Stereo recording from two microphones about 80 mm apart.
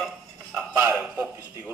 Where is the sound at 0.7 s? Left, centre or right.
Right.